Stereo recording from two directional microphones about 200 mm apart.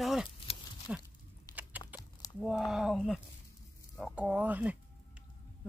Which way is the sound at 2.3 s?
Centre (ahead or behind).